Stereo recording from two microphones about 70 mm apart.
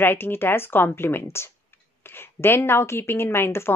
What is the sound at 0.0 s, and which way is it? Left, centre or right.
A woman's voice, left.